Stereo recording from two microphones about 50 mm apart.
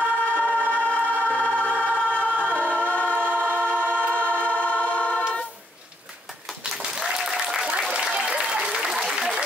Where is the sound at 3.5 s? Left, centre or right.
Right.